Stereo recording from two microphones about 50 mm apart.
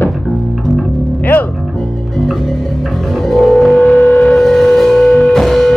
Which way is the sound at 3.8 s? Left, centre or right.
Left.